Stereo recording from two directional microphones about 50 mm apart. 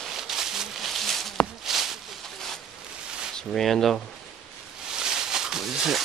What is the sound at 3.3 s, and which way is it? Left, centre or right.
Speech, centre.